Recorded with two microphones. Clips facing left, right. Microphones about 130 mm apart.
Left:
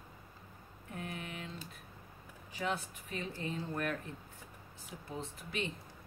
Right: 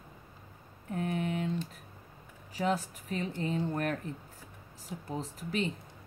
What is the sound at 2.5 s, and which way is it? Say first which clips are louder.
Speech: right 6 dB; 35° right (ahead or behind).